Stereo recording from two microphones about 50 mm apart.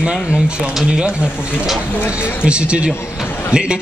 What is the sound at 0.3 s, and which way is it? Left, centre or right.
A man's voice, centre.